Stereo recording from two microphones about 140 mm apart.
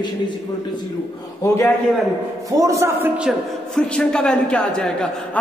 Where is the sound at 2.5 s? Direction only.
25° right (ahead or behind).